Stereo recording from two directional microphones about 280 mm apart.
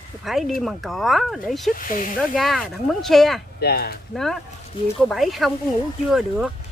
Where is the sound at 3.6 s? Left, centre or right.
Left.